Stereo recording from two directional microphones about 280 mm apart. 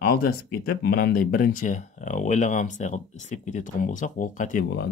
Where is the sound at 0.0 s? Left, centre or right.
Left.